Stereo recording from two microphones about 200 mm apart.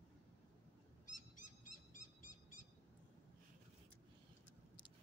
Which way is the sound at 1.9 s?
40° left (ahead or behind).